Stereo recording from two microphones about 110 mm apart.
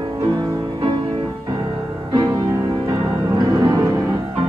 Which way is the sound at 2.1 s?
30° right (ahead or behind).